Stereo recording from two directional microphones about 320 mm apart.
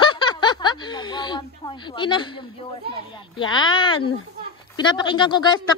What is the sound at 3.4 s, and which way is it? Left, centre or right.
Speech, centre.